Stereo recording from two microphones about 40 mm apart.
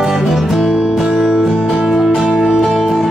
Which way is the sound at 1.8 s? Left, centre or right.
Centre.